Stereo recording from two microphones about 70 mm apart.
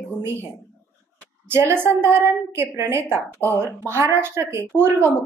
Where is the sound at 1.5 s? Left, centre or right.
Right.